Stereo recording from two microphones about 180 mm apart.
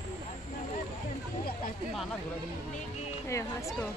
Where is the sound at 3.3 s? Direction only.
15° left (ahead or behind).